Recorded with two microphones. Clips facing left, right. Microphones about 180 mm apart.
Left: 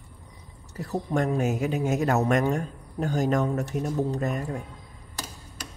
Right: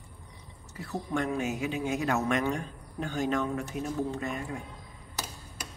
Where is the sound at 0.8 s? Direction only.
40° left (ahead or behind).